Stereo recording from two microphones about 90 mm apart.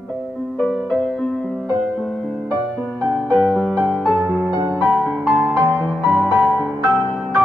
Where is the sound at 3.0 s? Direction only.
10° left (ahead or behind).